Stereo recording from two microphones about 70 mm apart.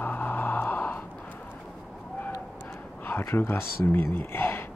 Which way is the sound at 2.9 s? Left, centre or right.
Left.